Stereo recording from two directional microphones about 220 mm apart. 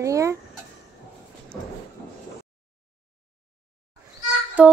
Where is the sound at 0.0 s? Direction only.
15° right (ahead or behind).